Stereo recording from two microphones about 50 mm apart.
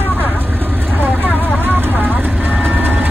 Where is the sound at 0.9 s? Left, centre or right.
Right.